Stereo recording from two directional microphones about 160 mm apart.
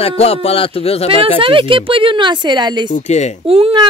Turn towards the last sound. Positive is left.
turn(degrees=-35)  # may be behind; listen again after turning